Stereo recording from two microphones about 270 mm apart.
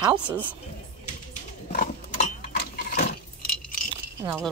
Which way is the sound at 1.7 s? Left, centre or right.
Left.